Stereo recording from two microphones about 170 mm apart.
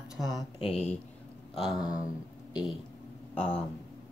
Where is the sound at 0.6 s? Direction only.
35° left (ahead or behind).